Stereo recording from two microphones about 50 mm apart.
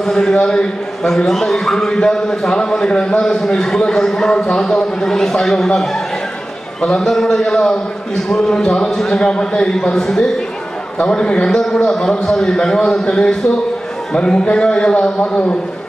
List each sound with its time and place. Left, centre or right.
0.0 s a man's voice: centre